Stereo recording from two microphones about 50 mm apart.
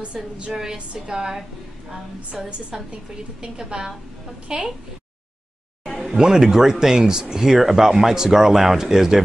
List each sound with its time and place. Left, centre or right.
0.2 s a woman's voice: centre
6.0 s speech: centre